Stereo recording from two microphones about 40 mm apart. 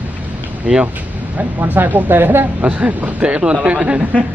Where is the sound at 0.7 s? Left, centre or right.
Right.